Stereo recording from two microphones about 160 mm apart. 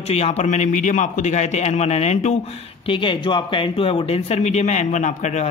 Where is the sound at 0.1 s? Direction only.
40° left (ahead or behind).